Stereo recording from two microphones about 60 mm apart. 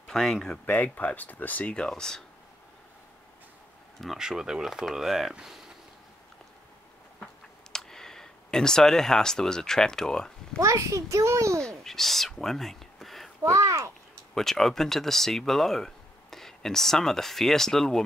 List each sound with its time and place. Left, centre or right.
0.0 s speech: centre
0.7 s speech: left; by 2.2 s centre
4.0 s speech: centre
7.7 s speech: centre
10.6 s a child's voice: right
11.6 s speech: centre
13.4 s a child's voice: right
14.3 s speech: centre